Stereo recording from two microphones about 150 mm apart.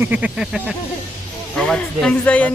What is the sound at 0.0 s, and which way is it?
Speech, 10° right (ahead or behind).